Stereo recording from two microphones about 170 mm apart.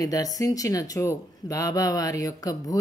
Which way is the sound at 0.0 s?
20° left (ahead or behind).